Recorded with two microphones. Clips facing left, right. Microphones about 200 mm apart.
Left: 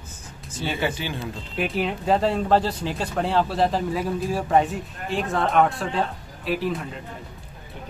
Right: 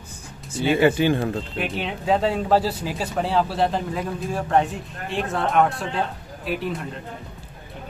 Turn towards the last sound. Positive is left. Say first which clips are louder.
# left 1 dB
turn(degrees=0)  # may be behind; listen again after turning